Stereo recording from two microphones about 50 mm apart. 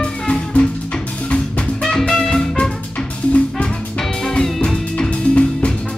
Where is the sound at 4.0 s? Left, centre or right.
Centre.